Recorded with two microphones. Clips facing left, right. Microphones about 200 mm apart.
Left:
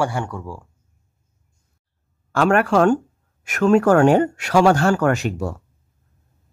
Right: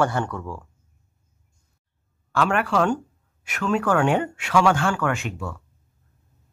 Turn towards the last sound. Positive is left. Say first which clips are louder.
# left 6 dB
turn(degrees=40)  # may be behind; listen again after turning